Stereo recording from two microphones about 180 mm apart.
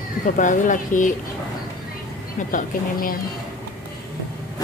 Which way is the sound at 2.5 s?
50° left (ahead or behind).